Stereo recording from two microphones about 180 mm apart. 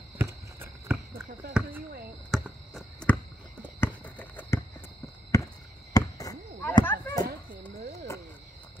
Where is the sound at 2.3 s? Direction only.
Centre (ahead or behind).